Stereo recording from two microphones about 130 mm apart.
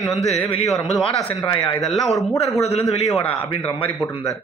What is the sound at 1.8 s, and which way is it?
Speech, centre (ahead or behind).